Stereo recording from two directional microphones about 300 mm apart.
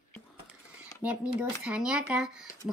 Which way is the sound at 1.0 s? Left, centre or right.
Centre.